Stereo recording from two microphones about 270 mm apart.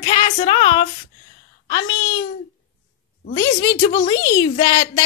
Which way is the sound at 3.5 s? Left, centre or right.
Centre.